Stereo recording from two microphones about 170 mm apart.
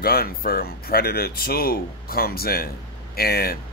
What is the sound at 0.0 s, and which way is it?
Speech, 65° left (ahead or behind).